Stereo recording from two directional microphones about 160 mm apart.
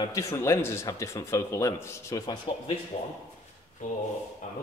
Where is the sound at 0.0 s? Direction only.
20° left (ahead or behind).